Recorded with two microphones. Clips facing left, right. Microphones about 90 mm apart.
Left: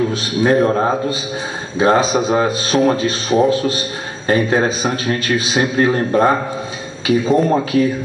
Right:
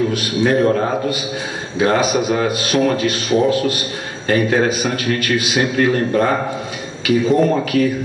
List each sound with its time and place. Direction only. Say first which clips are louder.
0.1 s speech: left 1 dB; 30° left (ahead or behind)